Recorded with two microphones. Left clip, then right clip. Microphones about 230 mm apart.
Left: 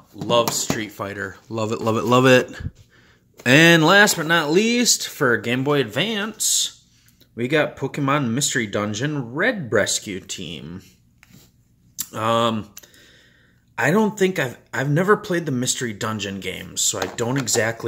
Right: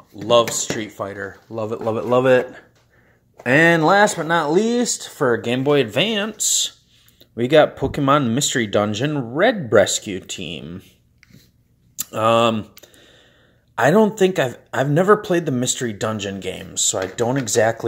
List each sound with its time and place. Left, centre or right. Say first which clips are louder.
0.1 s speech: right 3 dB; centre
0.9 s speech: right 1 dB; left
1.3 s a man's voice: even; left
3.8 s speech: even; centre
11.9 s speech: right 4 dB; centre
12.8 s a sound: right 1 dB; centre
13.7 s speech: right 4 dB; centre